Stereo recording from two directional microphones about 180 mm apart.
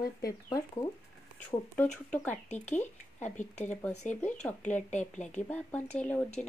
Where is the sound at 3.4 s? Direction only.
40° left (ahead or behind).